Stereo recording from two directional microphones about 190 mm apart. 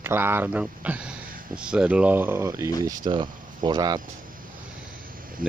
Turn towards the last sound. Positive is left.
turn(degrees=-20)  # may be behind; listen again after turning